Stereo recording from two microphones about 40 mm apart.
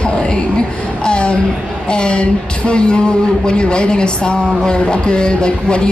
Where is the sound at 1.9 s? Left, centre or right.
Left.